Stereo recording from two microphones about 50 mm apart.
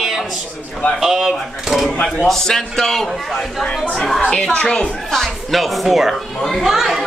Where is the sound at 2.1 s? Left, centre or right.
Centre.